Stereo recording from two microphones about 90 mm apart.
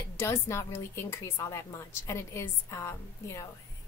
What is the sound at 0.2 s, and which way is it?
A woman's voice, 30° left (ahead or behind).